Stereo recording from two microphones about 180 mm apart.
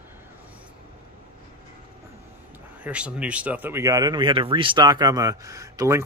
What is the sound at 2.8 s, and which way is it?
Speech, 5° right (ahead or behind).